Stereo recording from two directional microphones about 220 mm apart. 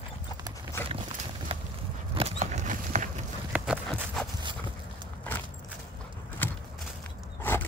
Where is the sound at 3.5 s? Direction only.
5° right (ahead or behind).